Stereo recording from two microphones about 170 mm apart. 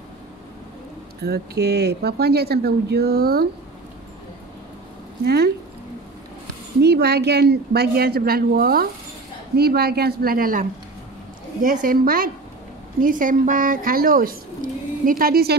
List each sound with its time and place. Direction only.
1.2 s speech: 70° right (ahead or behind)
5.2 s speech: 70° right (ahead or behind)
6.8 s a woman's voice: 75° right (ahead or behind)